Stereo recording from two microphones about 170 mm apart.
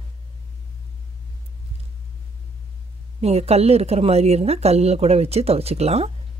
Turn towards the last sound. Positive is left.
turn(degrees=-40)  # may be behind; listen again after turning